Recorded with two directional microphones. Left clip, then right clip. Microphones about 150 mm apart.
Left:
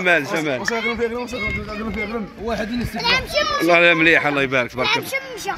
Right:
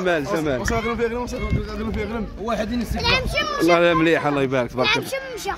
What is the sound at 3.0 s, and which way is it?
Speech, 60° left (ahead or behind).